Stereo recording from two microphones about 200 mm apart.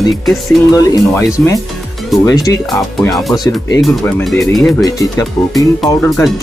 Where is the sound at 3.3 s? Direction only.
20° left (ahead or behind).